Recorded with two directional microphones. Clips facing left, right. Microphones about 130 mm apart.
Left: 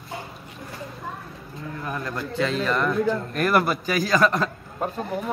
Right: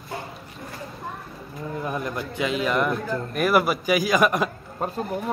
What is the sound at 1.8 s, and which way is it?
A man's voice, 20° right (ahead or behind).